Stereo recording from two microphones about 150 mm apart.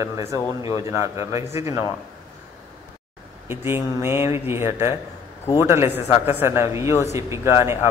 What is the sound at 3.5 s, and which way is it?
A man's voice, 15° right (ahead or behind).